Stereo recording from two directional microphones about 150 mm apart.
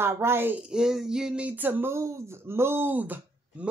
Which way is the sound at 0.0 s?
15° right (ahead or behind).